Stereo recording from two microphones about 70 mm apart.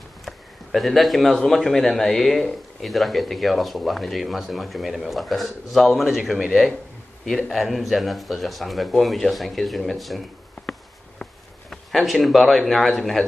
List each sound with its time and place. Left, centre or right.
0.2 s a man's voice: centre
11.7 s speech: centre